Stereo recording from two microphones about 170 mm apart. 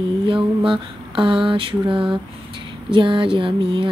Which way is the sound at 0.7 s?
30° right (ahead or behind).